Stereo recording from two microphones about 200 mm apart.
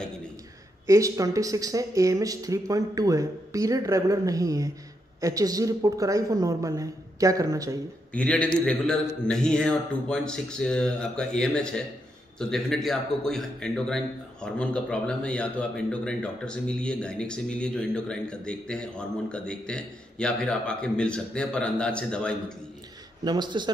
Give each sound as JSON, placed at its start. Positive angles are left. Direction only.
{"t": 0.8, "sound": "speech", "side_deg": -15}
{"t": 8.1, "sound": "a man's voice", "side_deg": 5}
{"t": 23.2, "sound": "a man's voice", "side_deg": -20}